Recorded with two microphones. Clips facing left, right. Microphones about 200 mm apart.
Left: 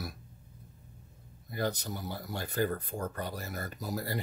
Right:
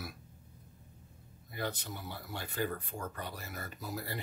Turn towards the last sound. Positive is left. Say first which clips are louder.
# left 5 dB
turn(degrees=40)  # may be behind; listen again after turning